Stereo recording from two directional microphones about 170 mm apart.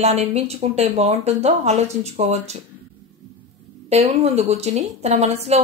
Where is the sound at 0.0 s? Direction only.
40° right (ahead or behind).